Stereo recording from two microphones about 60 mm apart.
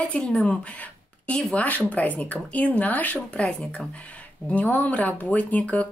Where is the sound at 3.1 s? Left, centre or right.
Centre.